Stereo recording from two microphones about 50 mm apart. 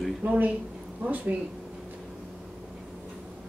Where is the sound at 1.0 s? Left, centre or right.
Right.